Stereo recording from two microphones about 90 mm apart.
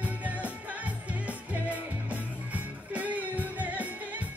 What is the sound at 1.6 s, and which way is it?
Music, 15° right (ahead or behind).